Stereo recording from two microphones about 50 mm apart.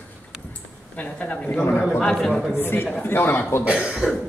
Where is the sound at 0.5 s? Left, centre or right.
Left.